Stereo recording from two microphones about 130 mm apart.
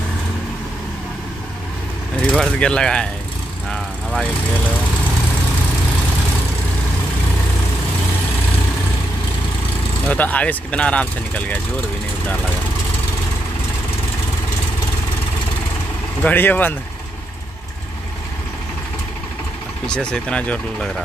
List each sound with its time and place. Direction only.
2.3 s speech: 5° left (ahead or behind)
10.0 s speech: 10° left (ahead or behind)
16.2 s speech: 15° left (ahead or behind)
19.9 s speech: 5° left (ahead or behind)